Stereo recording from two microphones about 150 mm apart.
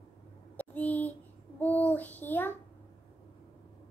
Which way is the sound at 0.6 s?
10° left (ahead or behind).